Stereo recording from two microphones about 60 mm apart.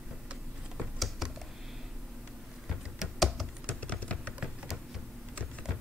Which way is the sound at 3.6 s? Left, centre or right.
Left.